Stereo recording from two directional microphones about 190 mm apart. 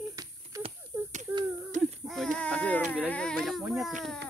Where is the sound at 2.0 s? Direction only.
Centre (ahead or behind).